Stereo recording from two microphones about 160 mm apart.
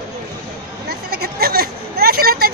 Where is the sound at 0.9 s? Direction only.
80° right.